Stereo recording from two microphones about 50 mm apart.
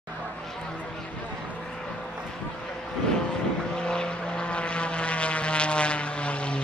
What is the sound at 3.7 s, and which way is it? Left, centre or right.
Vehicle, centre.